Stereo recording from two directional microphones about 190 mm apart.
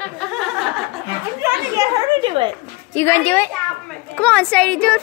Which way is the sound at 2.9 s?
10° left (ahead or behind).